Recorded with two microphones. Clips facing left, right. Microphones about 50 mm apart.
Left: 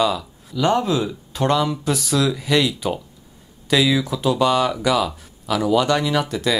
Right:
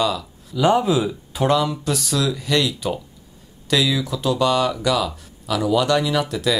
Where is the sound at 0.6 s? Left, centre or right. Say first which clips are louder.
Right 2 dB; centre.